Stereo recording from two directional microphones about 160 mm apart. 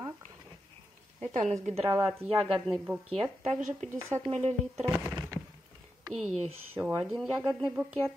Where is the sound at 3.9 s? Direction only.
15° right (ahead or behind).